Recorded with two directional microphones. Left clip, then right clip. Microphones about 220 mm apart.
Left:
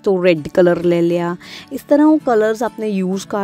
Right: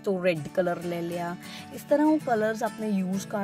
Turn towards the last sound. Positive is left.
turn(degrees=35)  # may be behind; listen again after turning